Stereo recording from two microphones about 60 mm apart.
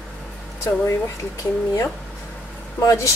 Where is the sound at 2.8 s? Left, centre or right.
Left.